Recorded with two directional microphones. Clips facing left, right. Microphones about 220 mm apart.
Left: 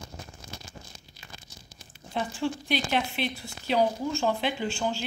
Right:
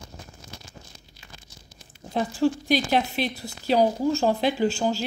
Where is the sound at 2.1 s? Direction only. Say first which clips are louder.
Right 7 dB; 40° right (ahead or behind).